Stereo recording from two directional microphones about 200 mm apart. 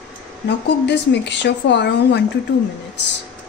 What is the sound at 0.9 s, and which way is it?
A woman's voice, 60° left (ahead or behind).